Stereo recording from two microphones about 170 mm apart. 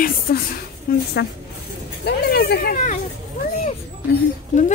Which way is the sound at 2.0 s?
70° left (ahead or behind).